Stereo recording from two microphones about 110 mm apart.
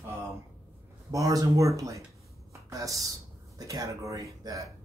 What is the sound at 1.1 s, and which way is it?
A woman's voice, 30° right (ahead or behind).